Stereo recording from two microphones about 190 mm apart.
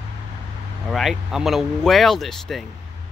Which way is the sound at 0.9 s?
Centre (ahead or behind).